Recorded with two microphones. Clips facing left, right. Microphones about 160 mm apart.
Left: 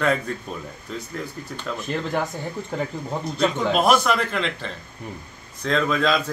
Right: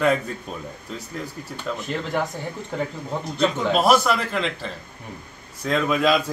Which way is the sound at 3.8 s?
5° right (ahead or behind).